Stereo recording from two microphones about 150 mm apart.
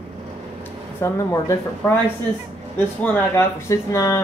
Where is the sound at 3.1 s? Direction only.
20° left (ahead or behind).